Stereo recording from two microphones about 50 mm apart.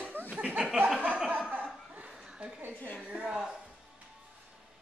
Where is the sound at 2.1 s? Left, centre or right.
Centre.